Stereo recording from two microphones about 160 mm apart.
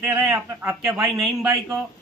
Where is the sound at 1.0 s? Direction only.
Centre (ahead or behind).